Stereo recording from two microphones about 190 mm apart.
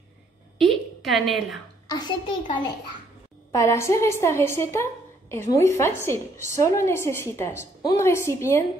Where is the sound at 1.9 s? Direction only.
25° left (ahead or behind).